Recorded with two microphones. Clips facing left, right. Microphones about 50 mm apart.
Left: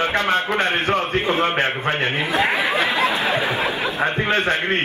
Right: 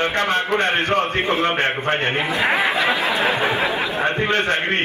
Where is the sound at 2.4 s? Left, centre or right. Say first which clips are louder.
Even; right.